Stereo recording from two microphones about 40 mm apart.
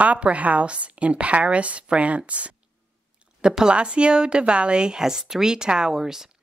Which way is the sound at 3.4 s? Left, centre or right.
Centre.